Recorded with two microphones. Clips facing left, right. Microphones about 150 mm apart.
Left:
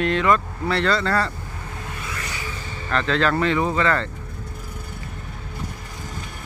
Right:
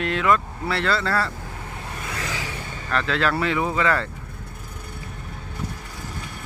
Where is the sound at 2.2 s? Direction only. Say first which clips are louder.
Right 2 dB; 90° right.